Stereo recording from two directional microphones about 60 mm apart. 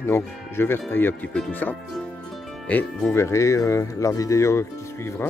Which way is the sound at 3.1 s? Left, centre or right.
Left.